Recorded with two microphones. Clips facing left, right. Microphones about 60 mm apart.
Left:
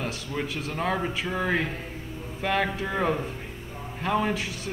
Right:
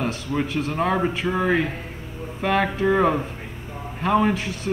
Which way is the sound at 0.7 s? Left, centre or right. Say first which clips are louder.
Right 5 dB; centre.